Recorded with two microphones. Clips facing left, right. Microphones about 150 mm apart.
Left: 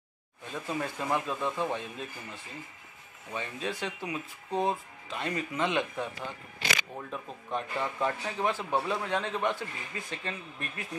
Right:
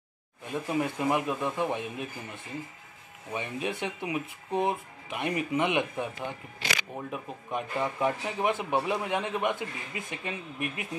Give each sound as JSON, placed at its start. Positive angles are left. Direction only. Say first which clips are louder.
{"t": 0.5, "sound": "speech", "louder": "right 5 dB", "side_deg": -15}
{"t": 3.3, "sound": "speech", "louder": "right 2 dB", "side_deg": -15}